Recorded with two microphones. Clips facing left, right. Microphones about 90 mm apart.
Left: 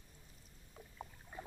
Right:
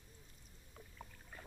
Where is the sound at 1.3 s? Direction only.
15° left (ahead or behind).